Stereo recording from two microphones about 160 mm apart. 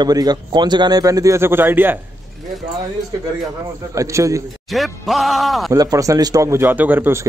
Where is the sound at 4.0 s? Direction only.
20° right (ahead or behind).